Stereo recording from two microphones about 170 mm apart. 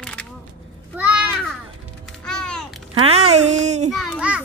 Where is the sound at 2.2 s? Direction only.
5° left (ahead or behind).